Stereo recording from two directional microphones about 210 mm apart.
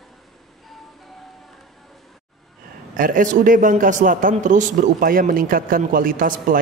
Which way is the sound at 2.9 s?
40° right (ahead or behind).